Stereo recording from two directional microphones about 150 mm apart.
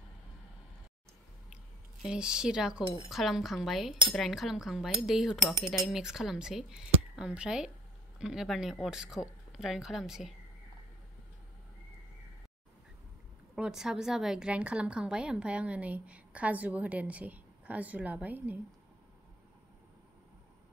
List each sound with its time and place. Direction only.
1.5 s a sound: 5° right (ahead or behind)
3.1 s speech: centre (ahead or behind)
13.6 s a woman's voice: 5° right (ahead or behind)